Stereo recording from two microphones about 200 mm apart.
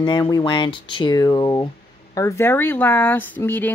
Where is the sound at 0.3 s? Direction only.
25° left (ahead or behind).